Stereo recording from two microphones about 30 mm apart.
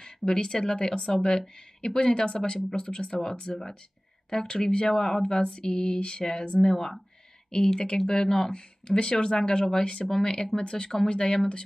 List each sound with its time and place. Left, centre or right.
0.0 s speech: left
3.5 s speech: centre
4.5 s speech: left
4.9 s speech: centre
5.2 s speech: left